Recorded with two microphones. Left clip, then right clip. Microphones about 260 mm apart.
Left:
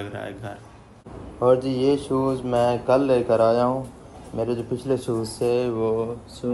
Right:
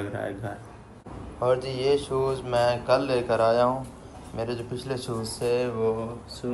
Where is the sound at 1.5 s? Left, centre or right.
Left.